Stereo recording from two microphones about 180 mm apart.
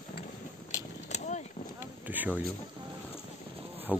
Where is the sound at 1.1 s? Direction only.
45° left (ahead or behind).